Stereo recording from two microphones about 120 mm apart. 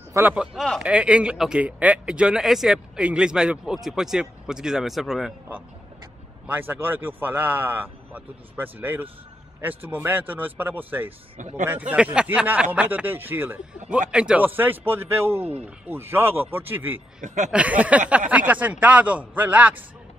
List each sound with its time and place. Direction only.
0.3 s a man's voice: 5° right (ahead or behind)
6.4 s a man's voice: 15° right (ahead or behind)
17.2 s speech: 90° right
17.5 s a man's voice: 10° right (ahead or behind)